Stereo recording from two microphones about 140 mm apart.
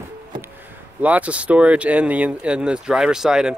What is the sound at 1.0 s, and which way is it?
Speech, 10° right (ahead or behind).